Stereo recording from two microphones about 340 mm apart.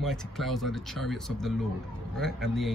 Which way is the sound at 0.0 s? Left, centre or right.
Centre.